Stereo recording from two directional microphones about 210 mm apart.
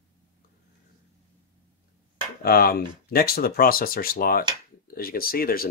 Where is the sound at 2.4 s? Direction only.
45° left (ahead or behind).